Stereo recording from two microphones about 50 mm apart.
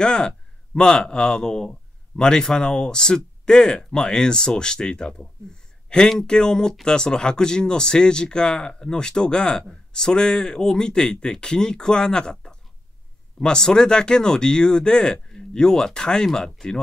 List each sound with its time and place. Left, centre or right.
0.0 s speech: centre